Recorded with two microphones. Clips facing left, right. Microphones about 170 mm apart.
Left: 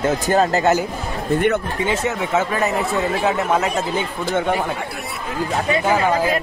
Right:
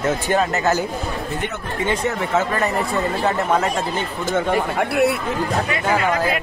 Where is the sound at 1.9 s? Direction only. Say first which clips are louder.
Even; 5° left (ahead or behind).